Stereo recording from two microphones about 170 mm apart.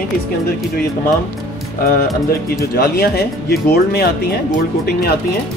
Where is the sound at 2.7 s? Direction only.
70° left (ahead or behind).